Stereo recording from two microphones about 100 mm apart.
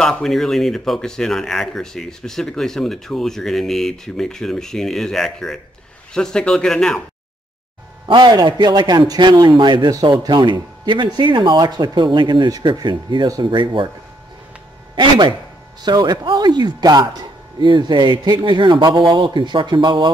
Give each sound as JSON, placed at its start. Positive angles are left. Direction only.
{"t": 0.0, "sound": "a man's voice", "side_deg": 5}
{"t": 8.1, "sound": "a man's voice", "side_deg": -45}
{"t": 15.0, "sound": "a man's voice", "side_deg": -50}